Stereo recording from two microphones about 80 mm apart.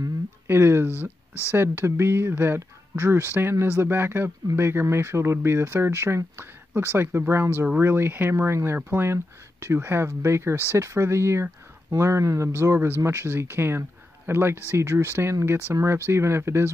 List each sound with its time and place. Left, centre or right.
0.5 s a sound: right
1.5 s speech: right
12.7 s speech: right